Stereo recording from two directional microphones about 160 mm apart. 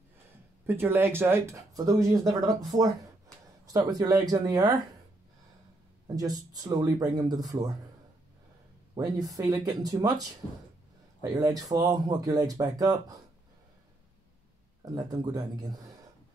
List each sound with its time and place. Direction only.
0.7 s speech: 15° right (ahead or behind)
6.0 s speech: 25° right (ahead or behind)
8.9 s speech: 20° right (ahead or behind)
14.9 s speech: 20° right (ahead or behind)